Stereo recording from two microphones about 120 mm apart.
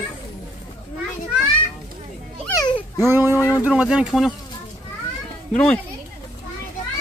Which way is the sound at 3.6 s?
10° right (ahead or behind).